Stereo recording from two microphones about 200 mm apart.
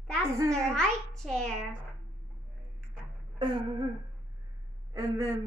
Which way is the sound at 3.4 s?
25° right (ahead or behind).